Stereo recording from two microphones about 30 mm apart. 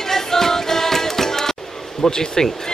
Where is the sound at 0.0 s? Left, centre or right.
Centre.